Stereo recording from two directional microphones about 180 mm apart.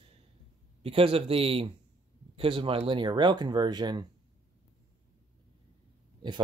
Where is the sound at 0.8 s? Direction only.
30° right (ahead or behind).